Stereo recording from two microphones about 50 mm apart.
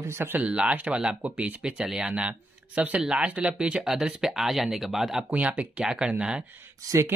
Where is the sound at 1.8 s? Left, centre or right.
Centre.